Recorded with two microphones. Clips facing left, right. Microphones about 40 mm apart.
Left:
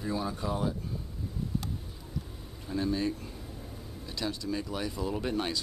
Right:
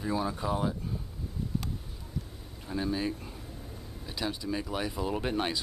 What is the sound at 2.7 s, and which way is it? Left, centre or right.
Speech, centre.